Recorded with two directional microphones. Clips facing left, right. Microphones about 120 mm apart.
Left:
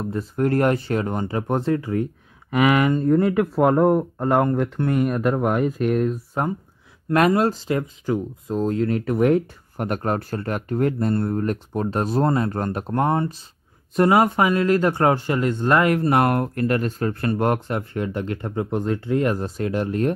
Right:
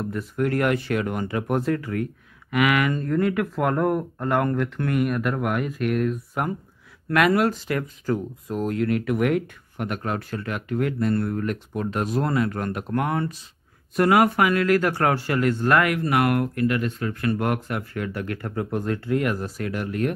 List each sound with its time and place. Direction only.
0.0 s speech: 30° left (ahead or behind)
15.9 s speech: 35° left (ahead or behind)